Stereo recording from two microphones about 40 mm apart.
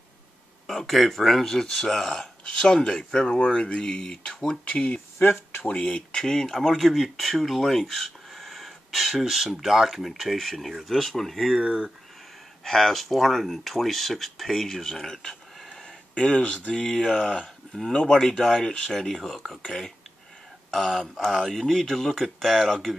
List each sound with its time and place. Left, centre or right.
0.7 s speech: centre; by 4.2 s left
4.6 s speech: left
6.1 s speech: centre
10.2 s speech: centre
12.6 s speech: centre
16.2 s speech: left
18.9 s speech: centre